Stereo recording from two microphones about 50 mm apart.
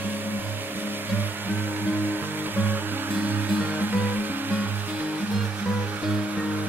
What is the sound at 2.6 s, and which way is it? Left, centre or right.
Music, right.